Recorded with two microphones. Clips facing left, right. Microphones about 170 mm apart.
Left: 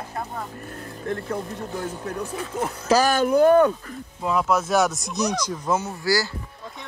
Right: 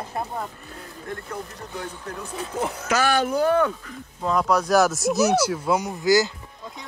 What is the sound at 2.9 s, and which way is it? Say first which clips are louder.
Speech: left 4 dB; 40° left (ahead or behind).